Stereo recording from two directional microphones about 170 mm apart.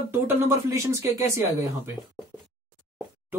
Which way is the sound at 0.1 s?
20° right (ahead or behind).